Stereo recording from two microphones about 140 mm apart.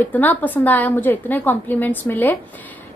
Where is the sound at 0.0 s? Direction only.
10° left (ahead or behind).